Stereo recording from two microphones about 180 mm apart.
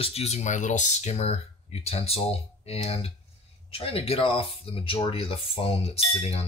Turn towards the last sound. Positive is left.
turn(degrees=35)  # may be behind; listen again after turning